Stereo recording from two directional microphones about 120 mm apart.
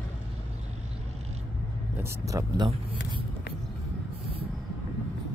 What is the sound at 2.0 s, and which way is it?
Speech, 25° right (ahead or behind).